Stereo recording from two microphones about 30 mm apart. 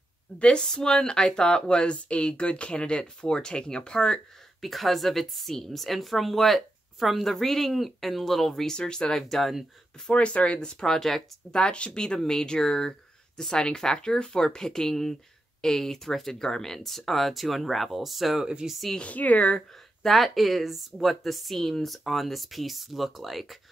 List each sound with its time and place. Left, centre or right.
0.7 s speech: left
3.2 s speech: left
4.6 s speech: centre
8.6 s speech: left
9.2 s speech: centre
10.1 s speech: left
10.6 s speech: centre
11.5 s speech: left; by 18.4 s centre
18.6 s speech: right
18.9 s speech: left
20.0 s speech: centre